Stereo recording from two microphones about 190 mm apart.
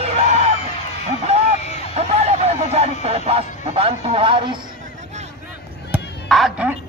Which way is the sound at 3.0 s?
30° right (ahead or behind).